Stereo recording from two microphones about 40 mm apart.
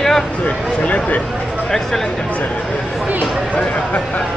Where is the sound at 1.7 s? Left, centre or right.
Centre.